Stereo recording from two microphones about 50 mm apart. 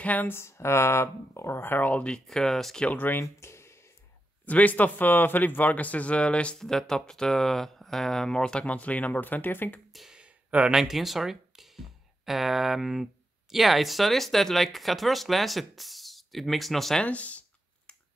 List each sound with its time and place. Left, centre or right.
0.0 s speech: left
0.3 s speech: left
1.3 s speech: left
1.6 s speech: left
1.9 s speech: left
2.1 s speech: centre
2.9 s speech: left
3.3 s a sound: left
4.5 s speech: left
6.6 s speech: centre; by 9.7 s left
10.1 s a sound: right
10.7 s speech: centre
17.0 s a sound: left